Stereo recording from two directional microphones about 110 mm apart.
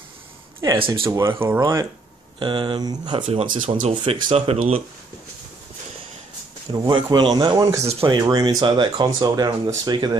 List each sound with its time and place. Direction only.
0.7 s speech: 55° right (ahead or behind)
1.0 s speech: 25° right (ahead or behind)
2.3 s speech: 45° right (ahead or behind)
3.3 s speech: 70° right (ahead or behind)
3.9 s speech: 55° right (ahead or behind)
6.7 s speech: 45° right (ahead or behind)
7.5 s speech: 30° right (ahead or behind)
7.8 s speech: 70° right (ahead or behind)
8.1 s speech: 40° right (ahead or behind)